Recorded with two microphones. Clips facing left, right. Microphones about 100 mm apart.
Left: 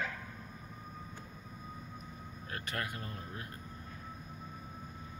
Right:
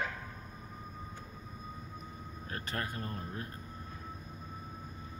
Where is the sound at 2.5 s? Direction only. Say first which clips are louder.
Right 1 dB; 30° right (ahead or behind).